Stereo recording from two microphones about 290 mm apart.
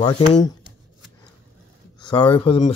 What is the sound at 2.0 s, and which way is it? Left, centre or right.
Speech, centre.